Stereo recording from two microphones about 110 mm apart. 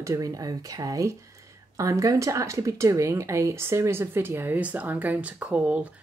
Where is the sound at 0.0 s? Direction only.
30° right (ahead or behind).